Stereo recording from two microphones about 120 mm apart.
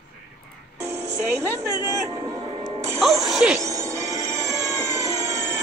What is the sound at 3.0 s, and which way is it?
Music, centre (ahead or behind).